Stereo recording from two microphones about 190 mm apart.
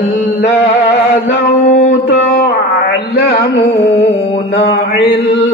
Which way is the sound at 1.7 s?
45° left (ahead or behind).